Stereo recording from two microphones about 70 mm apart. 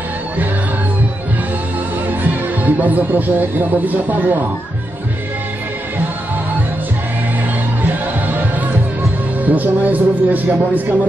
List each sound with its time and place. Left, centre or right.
2.2 s speech: right
7.8 s music: right
9.5 s a man's voice: right